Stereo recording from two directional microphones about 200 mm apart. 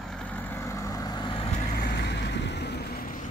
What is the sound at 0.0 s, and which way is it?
Vehicle, 5° left (ahead or behind).